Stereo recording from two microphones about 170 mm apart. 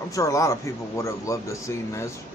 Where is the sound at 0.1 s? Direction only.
20° left (ahead or behind).